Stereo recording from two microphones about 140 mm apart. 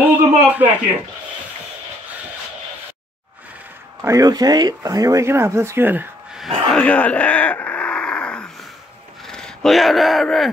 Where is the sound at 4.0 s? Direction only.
20° right (ahead or behind).